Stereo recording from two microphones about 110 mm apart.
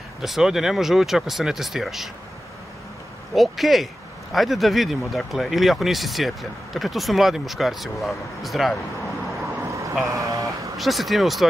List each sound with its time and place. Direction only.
0.2 s speech: 5° right (ahead or behind)
3.3 s speech: centre (ahead or behind)
9.6 s vehicle: 30° right (ahead or behind)
10.0 s speech: 30° right (ahead or behind)
10.8 s speech: centre (ahead or behind)